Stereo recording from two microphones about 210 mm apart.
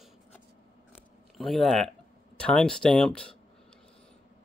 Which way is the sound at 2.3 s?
5° left (ahead or behind).